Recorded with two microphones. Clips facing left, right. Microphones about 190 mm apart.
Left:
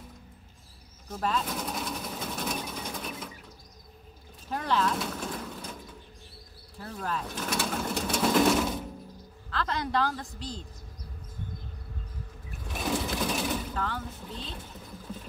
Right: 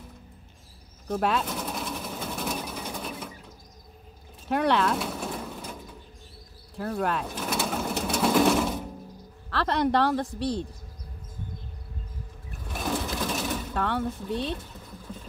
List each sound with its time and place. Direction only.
1.0 s speech: 70° right (ahead or behind)
1.5 s sewing machine: centre (ahead or behind)
4.5 s speech: 70° right (ahead or behind)
4.9 s a sound: 5° right (ahead or behind)
6.8 s speech: 70° right (ahead or behind)
7.3 s sewing machine: 5° right (ahead or behind)
9.5 s a woman's voice: 65° right (ahead or behind)
12.7 s sewing machine: 5° left (ahead or behind)
13.7 s speech: 65° right (ahead or behind)